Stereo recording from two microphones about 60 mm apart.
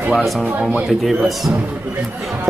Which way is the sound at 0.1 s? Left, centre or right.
Centre.